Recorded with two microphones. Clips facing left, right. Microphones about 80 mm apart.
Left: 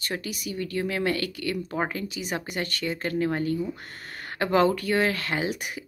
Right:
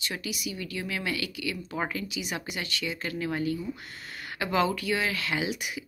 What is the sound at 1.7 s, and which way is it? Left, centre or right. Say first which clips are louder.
Speech: left 1 dB; left.